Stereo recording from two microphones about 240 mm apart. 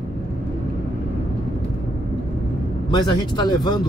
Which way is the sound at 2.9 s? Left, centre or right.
Centre.